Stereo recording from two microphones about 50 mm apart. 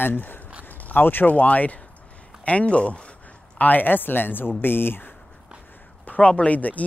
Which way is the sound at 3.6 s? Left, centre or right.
Left.